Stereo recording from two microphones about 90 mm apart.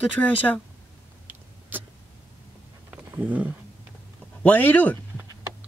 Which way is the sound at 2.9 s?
15° right (ahead or behind).